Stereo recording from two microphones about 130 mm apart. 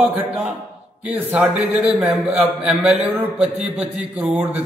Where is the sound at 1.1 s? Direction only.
10° right (ahead or behind).